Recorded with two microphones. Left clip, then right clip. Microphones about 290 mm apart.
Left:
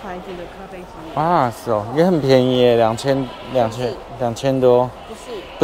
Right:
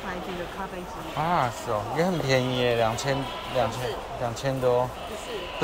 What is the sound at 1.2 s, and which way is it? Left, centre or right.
Speech, left.